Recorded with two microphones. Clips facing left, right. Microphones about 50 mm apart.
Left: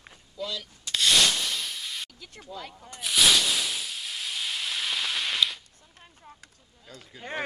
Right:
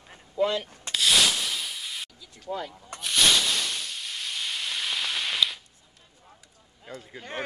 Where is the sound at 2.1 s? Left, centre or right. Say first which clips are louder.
Left 4 dB; left.